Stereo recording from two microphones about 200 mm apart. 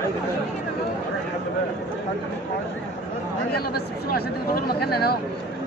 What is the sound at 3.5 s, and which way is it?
Speech, 50° left (ahead or behind).